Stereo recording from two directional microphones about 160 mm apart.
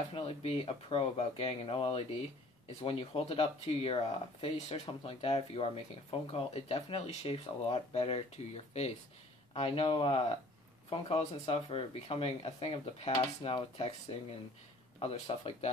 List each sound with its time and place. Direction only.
0.1 s speech: 35° left (ahead or behind)
15.0 s speech: 40° left (ahead or behind)